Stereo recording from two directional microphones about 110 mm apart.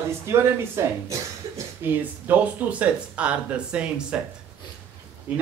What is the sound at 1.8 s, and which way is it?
Speech, 15° right (ahead or behind).